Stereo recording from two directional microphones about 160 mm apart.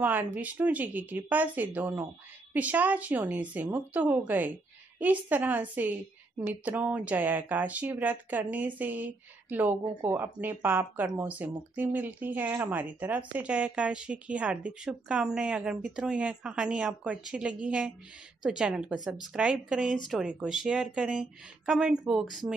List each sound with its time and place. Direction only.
0.0 s a woman's voice: 10° right (ahead or behind)